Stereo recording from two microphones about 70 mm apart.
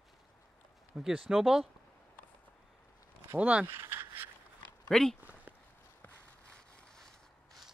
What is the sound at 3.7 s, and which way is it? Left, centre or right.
Speech, right.